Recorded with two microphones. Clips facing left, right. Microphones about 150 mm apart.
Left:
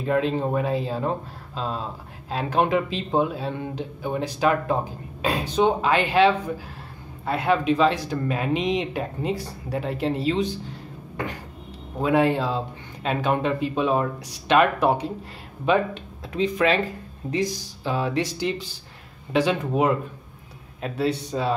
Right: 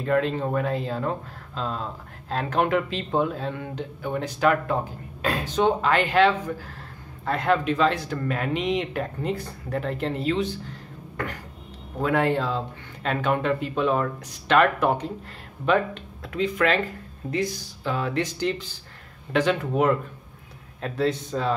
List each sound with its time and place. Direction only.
0.0 s speech: 20° left (ahead or behind)
12.0 s speech: 15° left (ahead or behind)
21.3 s speech: 15° left (ahead or behind)